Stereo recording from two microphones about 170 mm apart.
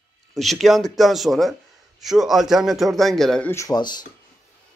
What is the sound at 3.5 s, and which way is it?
Speech, 20° left (ahead or behind).